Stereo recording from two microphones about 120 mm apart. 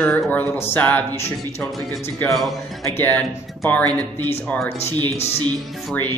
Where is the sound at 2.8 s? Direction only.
20° left (ahead or behind).